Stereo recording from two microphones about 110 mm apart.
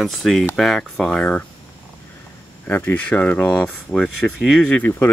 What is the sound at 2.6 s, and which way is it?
Speech, 15° left (ahead or behind).